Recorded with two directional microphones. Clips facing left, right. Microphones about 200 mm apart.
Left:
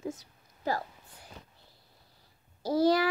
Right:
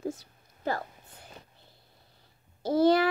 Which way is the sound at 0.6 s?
55° right (ahead or behind).